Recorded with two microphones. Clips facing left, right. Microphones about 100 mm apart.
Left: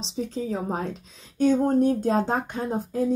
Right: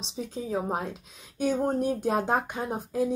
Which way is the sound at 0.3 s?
10° right (ahead or behind).